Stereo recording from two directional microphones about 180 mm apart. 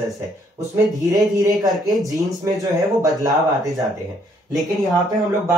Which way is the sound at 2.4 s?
20° right (ahead or behind).